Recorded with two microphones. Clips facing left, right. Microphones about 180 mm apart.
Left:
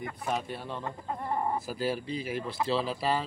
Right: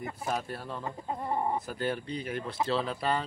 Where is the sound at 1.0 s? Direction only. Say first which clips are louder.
Right 1 dB; 20° right (ahead or behind).